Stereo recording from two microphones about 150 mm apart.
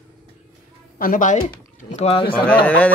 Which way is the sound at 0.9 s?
65° left (ahead or behind).